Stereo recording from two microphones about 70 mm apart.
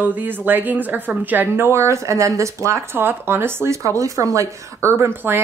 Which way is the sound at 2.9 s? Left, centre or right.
Right.